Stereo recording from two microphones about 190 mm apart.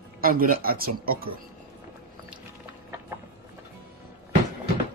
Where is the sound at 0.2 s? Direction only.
50° right (ahead or behind).